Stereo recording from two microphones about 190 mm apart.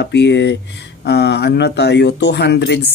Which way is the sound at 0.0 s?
65° left (ahead or behind).